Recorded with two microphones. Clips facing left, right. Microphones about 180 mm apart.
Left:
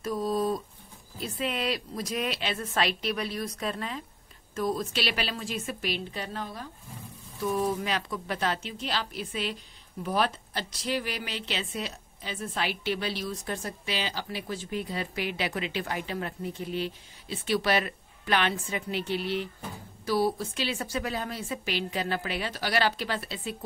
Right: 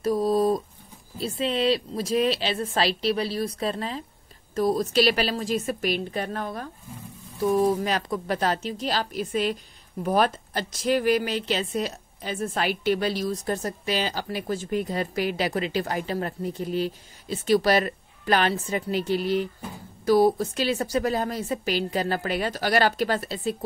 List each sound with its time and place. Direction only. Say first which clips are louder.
0.0 s a sound: right 6 dB; 35° right (ahead or behind)
1.1 s a woman's voice: right 6 dB; 30° right (ahead or behind); by 6.7 s 55° right (ahead or behind)
7.5 s a woman's voice: right 6 dB; 40° right (ahead or behind)